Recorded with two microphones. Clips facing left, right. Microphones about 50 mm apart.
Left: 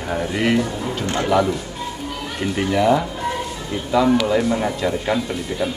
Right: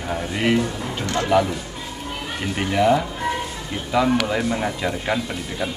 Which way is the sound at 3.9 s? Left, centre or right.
Centre.